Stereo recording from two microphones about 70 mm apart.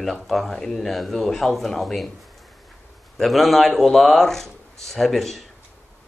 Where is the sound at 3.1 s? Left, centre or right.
Centre.